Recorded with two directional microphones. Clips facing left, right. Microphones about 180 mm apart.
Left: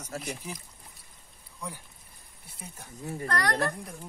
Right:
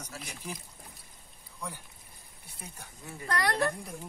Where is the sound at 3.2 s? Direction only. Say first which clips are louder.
Left 1 dB; 10° right (ahead or behind).